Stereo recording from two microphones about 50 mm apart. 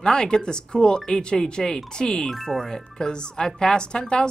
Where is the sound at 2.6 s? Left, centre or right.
Centre.